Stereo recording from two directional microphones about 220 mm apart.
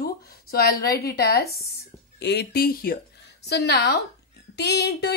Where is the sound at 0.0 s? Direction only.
45° left (ahead or behind).